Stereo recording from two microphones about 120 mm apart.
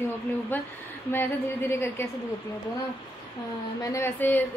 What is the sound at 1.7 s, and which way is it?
Speech, 20° left (ahead or behind).